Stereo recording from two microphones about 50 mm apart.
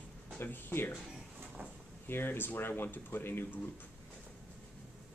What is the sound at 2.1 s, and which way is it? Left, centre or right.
Speech, left.